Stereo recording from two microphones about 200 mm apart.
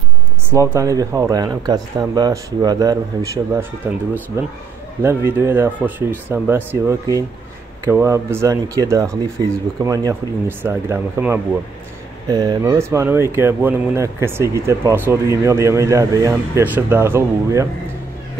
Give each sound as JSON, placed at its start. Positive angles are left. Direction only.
{"t": 0.5, "sound": "speech", "side_deg": -15}